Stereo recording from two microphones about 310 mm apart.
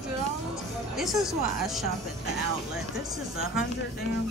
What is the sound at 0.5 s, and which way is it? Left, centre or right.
Music, centre.